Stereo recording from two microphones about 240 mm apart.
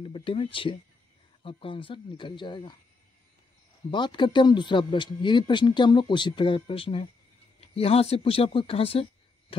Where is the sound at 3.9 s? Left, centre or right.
Centre.